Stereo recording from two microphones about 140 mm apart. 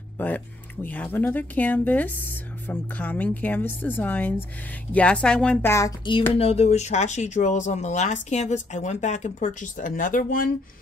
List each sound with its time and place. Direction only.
0.2 s a woman's voice: 15° left (ahead or behind)
5.7 s speech: 20° left (ahead or behind)
6.3 s speech: 45° left (ahead or behind); by 10.5 s 80° left